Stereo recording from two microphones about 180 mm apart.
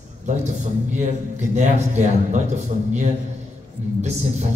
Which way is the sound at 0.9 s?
40° right (ahead or behind).